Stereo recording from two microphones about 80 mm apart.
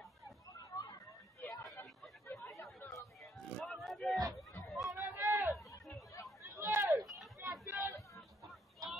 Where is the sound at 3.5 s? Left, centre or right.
Centre.